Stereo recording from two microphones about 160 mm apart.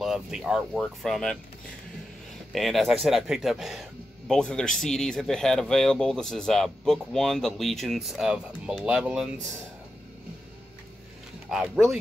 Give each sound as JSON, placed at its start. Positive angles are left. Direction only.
{"t": 0.0, "sound": "speech", "side_deg": 0}
{"t": 2.5, "sound": "speech", "side_deg": 0}
{"t": 11.5, "sound": "speech", "side_deg": -5}